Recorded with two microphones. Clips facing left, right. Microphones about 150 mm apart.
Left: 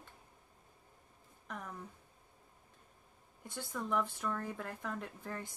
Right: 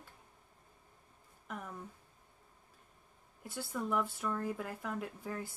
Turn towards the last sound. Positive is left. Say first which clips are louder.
# right 3 dB
turn(degrees=-5)  # may be behind; listen again after turning